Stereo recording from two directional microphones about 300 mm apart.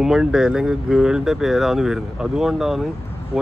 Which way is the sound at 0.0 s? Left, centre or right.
Centre.